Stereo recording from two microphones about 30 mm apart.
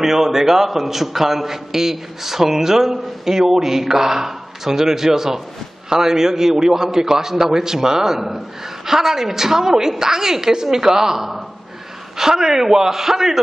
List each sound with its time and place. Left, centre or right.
0.0 s a man's voice: centre